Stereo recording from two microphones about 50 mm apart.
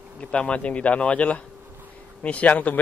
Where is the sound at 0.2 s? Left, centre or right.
Left.